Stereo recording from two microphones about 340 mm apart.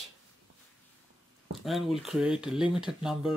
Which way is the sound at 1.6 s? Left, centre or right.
Centre.